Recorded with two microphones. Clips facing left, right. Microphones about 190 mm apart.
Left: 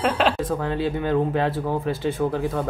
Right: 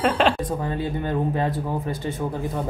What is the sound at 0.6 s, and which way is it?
Speech, 90° left.